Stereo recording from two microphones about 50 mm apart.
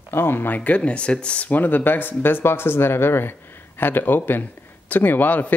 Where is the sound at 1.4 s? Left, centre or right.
Left.